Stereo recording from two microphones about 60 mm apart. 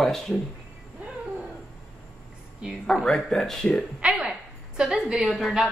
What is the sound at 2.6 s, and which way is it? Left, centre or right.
Speech, centre.